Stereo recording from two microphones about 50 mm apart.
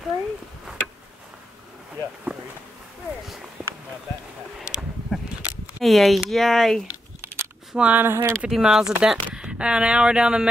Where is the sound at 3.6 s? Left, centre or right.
Right.